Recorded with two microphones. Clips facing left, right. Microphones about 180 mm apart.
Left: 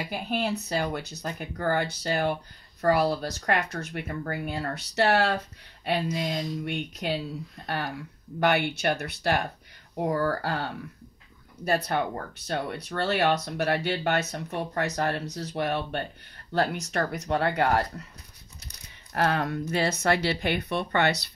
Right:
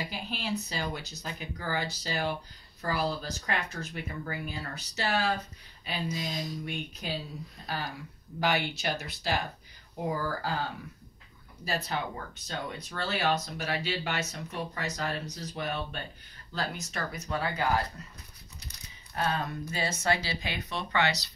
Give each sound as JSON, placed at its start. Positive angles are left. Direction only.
{"t": 0.1, "sound": "speech", "side_deg": 55}
{"t": 2.8, "sound": "speech", "side_deg": 65}
{"t": 12.4, "sound": "speech", "side_deg": 65}
{"t": 19.1, "sound": "speech", "side_deg": 70}